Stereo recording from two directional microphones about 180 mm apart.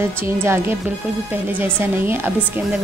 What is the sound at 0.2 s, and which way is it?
A woman's voice, 15° right (ahead or behind).